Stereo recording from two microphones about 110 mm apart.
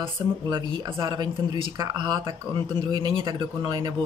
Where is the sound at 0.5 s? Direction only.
40° right (ahead or behind).